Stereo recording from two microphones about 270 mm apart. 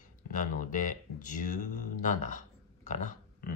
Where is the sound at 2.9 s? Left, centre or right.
Left.